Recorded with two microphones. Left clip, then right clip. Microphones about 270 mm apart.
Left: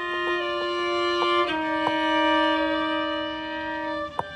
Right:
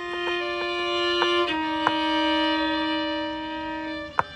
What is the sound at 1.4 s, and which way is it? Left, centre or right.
Violin, centre.